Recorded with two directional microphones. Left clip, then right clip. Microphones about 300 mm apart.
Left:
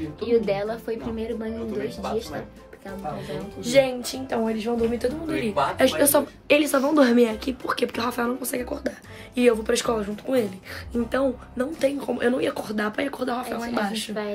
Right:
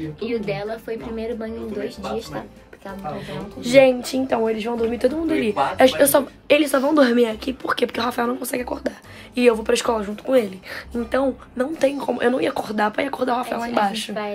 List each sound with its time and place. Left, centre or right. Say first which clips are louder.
0.2 s a woman's voice: left 4 dB; centre
0.8 s a woman's voice: right 2 dB; centre
3.3 s speech: right 4 dB; right
5.8 s a woman's voice: right 6 dB; centre